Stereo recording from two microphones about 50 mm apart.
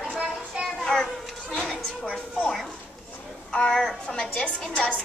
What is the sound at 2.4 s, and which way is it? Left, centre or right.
Speech, centre.